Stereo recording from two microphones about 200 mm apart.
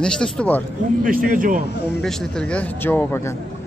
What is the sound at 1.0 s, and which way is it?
Speech, 45° right (ahead or behind).